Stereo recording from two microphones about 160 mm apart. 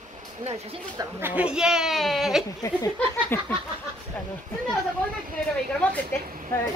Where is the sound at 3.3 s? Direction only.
15° left (ahead or behind).